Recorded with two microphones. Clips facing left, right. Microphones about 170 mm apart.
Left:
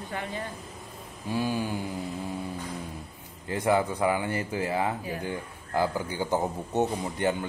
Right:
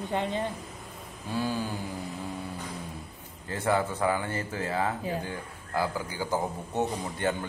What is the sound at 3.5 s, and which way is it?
A man's voice, 15° left (ahead or behind).